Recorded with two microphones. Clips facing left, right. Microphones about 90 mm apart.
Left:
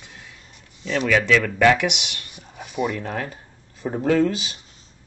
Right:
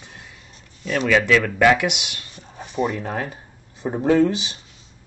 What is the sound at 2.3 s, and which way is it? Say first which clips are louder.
Cat: right 1 dB; 15° left (ahead or behind).